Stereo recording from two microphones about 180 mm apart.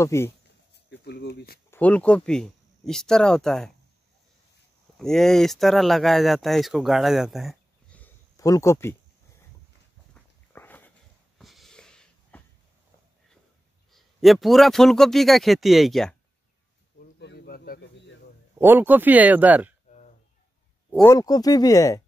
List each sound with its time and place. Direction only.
0.0 s speech: 15° left (ahead or behind)
0.7 s speech: 65° left (ahead or behind)
1.7 s speech: 10° left (ahead or behind)
4.9 s speech: centre (ahead or behind)
8.0 s a sound: 15° left (ahead or behind)
10.1 s dog: 10° left (ahead or behind)
11.3 s snort: centre (ahead or behind)
13.9 s speech: centre (ahead or behind)
17.2 s bird: 65° left (ahead or behind)
18.6 s speech: 10° right (ahead or behind)
21.0 s speech: 20° left (ahead or behind)